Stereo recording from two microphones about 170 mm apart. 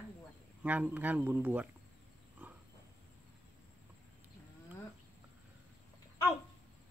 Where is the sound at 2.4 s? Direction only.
10° right (ahead or behind).